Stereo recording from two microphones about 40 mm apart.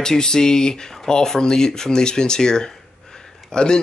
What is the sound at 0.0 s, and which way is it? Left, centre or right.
Speech, centre.